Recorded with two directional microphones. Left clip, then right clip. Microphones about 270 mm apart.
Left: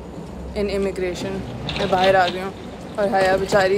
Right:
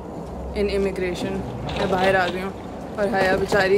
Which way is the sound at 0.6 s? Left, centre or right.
Centre.